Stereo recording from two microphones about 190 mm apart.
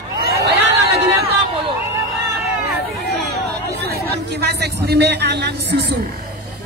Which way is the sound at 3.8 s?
60° right (ahead or behind).